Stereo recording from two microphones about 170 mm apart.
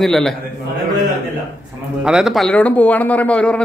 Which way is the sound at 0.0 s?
Centre (ahead or behind).